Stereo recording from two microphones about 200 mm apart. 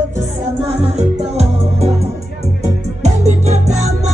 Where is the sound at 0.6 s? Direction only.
30° right (ahead or behind).